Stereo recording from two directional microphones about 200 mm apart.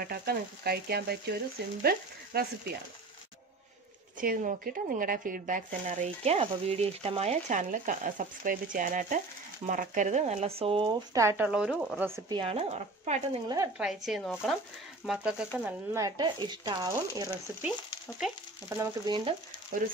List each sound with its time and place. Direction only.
0.0 s speech: 50° right (ahead or behind)
4.2 s speech: 40° right (ahead or behind); by 12.1 s 5° right (ahead or behind)
12.3 s speech: 25° right (ahead or behind)
13.7 s speech: centre (ahead or behind)
15.6 s speech: 15° right (ahead or behind)
18.2 s speech: centre (ahead or behind)
18.8 s speech: 20° right (ahead or behind)